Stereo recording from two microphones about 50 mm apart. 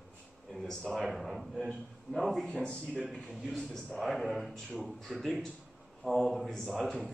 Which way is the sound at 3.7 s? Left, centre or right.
Centre.